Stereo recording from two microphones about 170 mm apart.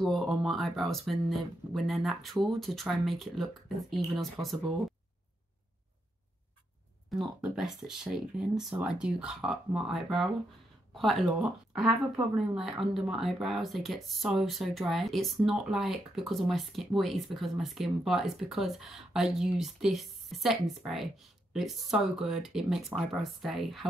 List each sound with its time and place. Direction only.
0.0 s speech: centre (ahead or behind)
7.1 s speech: centre (ahead or behind)